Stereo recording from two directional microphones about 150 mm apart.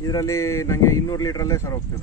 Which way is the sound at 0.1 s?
20° left (ahead or behind).